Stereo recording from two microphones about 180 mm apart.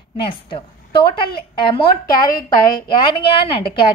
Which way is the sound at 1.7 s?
25° left (ahead or behind).